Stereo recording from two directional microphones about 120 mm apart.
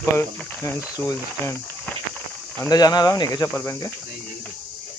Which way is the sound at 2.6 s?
30° left (ahead or behind).